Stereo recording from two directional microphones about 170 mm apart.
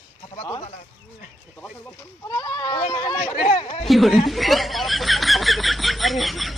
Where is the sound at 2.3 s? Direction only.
20° left (ahead or behind).